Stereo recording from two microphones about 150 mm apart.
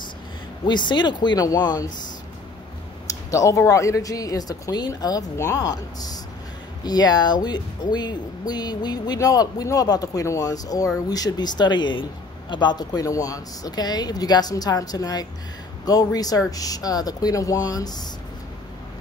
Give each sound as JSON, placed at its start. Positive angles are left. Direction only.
{"t": 0.7, "sound": "speech", "side_deg": 30}
{"t": 3.1, "sound": "speech", "side_deg": 20}